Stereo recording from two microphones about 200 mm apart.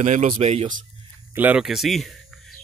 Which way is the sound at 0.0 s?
40° right (ahead or behind).